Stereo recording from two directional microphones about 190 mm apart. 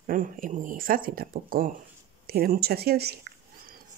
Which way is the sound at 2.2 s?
50° right (ahead or behind).